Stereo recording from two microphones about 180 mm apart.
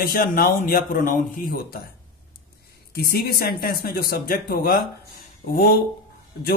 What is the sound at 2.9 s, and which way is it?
Speech, 60° left (ahead or behind).